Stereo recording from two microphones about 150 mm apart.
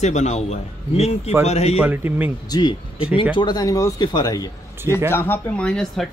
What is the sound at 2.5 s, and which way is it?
Speech, 30° left (ahead or behind).